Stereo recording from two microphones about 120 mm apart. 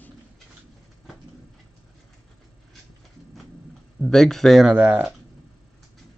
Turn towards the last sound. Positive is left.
turn(degrees=-15)  # may be behind; listen again after turning